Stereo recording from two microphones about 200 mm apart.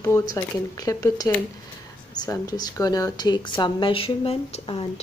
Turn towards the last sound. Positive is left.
turn(degrees=30)  # may be behind; listen again after turning